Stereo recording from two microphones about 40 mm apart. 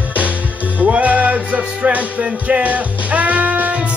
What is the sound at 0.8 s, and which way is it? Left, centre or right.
Music, right.